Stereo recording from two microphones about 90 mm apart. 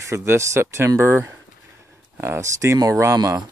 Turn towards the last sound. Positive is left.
turn(degrees=-40)  # may be behind; listen again after turning